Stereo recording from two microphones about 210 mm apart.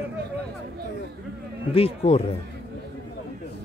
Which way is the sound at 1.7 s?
30° left (ahead or behind).